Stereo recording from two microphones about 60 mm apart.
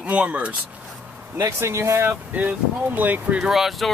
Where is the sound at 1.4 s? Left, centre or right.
Right.